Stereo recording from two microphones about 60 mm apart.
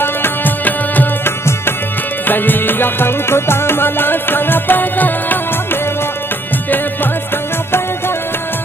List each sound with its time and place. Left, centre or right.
0.0 s music: left